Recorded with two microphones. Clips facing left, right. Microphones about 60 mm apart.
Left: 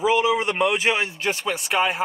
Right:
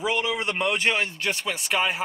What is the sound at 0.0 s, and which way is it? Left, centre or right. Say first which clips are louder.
A man's voice: left 6 dB; centre.